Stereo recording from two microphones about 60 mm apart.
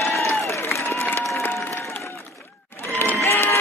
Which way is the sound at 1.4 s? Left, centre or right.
Left.